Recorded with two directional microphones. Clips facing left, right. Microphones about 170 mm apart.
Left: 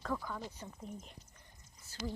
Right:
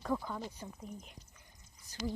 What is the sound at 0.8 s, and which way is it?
Speech, centre (ahead or behind).